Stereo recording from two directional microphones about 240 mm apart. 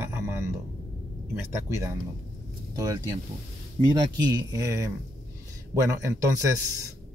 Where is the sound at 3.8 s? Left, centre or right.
Right.